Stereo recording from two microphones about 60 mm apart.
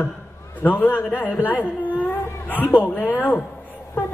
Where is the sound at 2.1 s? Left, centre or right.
Left.